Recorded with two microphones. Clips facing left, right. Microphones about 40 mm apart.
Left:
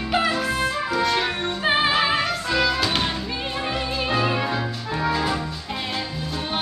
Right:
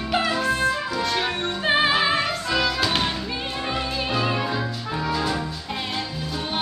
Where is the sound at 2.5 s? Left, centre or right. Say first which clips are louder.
Left 2 dB; centre.